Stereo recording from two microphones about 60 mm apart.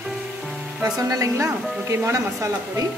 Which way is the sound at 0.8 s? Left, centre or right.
Right.